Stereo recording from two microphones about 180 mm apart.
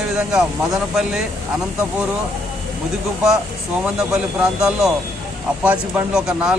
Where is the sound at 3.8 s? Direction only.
5° right (ahead or behind).